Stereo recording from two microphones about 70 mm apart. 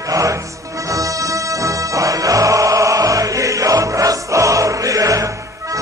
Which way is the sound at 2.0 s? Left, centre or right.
Right.